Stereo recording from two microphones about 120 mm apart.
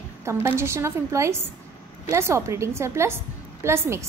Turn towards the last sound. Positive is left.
turn(degrees=-25)  # may be behind; listen again after turning